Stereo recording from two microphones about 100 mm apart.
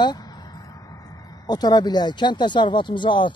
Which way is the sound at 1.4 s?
45° left (ahead or behind).